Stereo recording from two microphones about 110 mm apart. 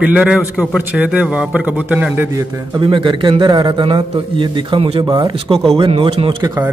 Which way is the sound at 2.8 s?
50° right (ahead or behind).